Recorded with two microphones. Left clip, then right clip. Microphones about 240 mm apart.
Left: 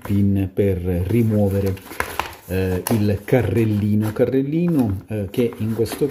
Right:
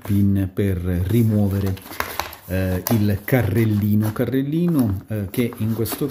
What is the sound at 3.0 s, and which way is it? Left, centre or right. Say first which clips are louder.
Speech: left 3 dB; centre.